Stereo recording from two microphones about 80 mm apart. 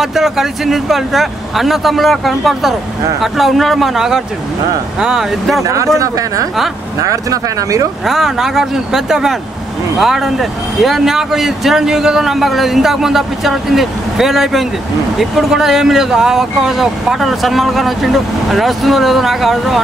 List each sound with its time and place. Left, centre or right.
0.0 s speech: centre
5.9 s speech: right
8.0 s speech: centre